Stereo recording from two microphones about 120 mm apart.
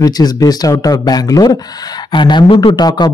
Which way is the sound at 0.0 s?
35° left (ahead or behind).